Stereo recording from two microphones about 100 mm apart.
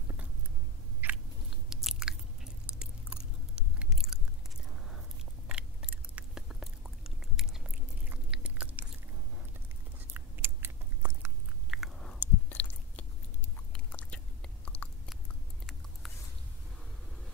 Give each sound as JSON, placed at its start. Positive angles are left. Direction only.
{"t": 1.0, "sound": "biting", "side_deg": -15}
{"t": 1.7, "sound": "biting", "side_deg": -5}
{"t": 2.6, "sound": "chewing", "side_deg": -10}
{"t": 5.5, "sound": "biting", "side_deg": -10}
{"t": 7.3, "sound": "chewing", "side_deg": -5}
{"t": 9.9, "sound": "biting", "side_deg": -20}
{"t": 11.7, "sound": "biting", "side_deg": 0}
{"t": 12.2, "sound": "chewing", "side_deg": 15}
{"t": 13.7, "sound": "biting", "side_deg": 10}